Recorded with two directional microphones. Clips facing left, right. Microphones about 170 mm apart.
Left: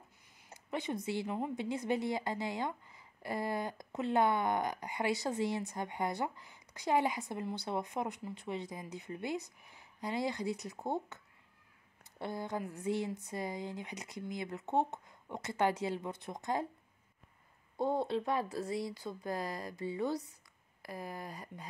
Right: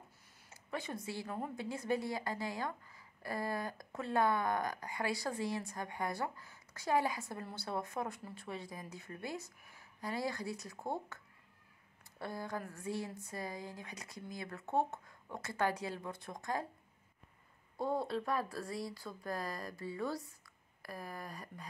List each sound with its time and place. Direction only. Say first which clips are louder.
0.7 s a woman's voice: left 5 dB; 20° left (ahead or behind)
12.2 s a woman's voice: left 3 dB; 20° left (ahead or behind)
17.7 s a woman's voice: left 3 dB; 25° left (ahead or behind)